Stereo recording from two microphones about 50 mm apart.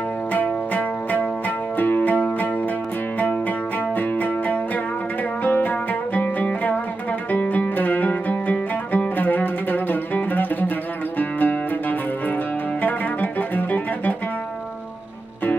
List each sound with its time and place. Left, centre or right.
0.3 s music: left